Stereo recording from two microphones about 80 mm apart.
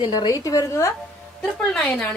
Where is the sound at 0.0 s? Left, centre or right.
Left.